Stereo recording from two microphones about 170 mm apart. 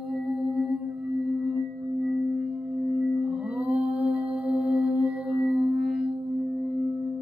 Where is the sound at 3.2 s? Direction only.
5° right (ahead or behind).